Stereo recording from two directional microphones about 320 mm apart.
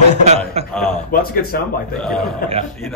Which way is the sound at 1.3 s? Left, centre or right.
Left.